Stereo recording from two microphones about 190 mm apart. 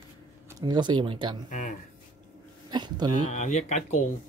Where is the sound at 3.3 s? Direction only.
40° left (ahead or behind).